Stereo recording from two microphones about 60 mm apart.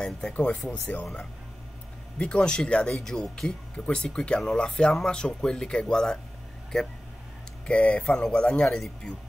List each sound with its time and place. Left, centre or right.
0.7 s speech: left
2.1 s speech: centre